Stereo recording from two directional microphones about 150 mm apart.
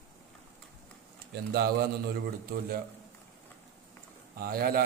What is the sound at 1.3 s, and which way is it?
Speech, 90° right.